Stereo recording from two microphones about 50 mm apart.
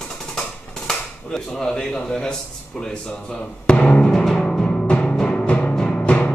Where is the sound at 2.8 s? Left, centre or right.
Centre.